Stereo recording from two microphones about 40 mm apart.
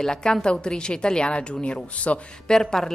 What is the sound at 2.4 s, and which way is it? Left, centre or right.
Speech, centre.